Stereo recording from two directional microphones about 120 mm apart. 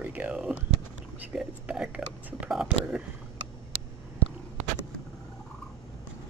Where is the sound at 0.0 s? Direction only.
15° right (ahead or behind).